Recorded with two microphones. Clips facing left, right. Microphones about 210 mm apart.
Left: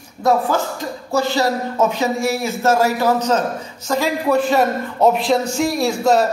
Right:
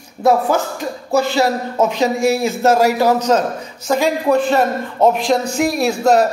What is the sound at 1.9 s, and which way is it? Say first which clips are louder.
A man's voice: right 4 dB; 20° right (ahead or behind).